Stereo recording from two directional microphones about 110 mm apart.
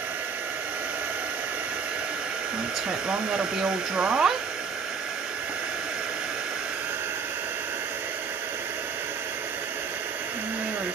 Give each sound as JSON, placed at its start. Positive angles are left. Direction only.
{"t": 3.1, "sound": "speech", "side_deg": -10}